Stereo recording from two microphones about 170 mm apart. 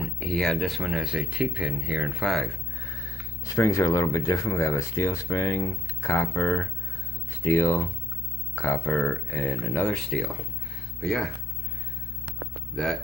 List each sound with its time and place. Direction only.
0.0 s speech: 5° left (ahead or behind)
2.8 s speech: 15° left (ahead or behind)